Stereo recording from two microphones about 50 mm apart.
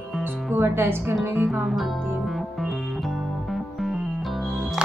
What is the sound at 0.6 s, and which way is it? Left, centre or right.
Speech, right.